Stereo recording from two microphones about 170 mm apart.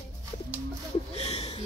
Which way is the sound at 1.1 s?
40° left (ahead or behind).